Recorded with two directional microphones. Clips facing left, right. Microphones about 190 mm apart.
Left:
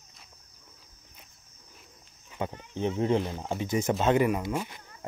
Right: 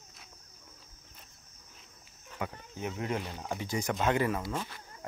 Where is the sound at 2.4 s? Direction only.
25° left (ahead or behind).